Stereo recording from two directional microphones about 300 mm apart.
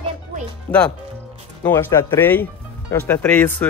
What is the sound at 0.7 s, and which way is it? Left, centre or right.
A child's voice, centre.